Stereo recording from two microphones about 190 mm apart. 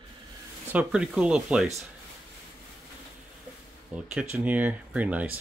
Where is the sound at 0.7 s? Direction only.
5° right (ahead or behind).